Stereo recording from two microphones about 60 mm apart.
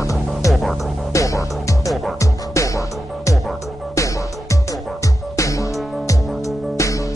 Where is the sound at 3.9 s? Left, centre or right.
Left.